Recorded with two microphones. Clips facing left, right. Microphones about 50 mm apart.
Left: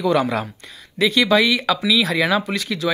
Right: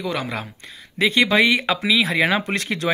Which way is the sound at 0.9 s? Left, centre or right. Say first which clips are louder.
Left 1 dB; right.